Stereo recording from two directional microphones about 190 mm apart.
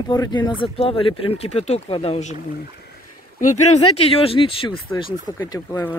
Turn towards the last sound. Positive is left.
turn(degrees=15)  # may be behind; listen again after turning